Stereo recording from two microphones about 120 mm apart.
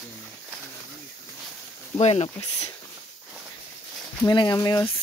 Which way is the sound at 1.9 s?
55° left (ahead or behind).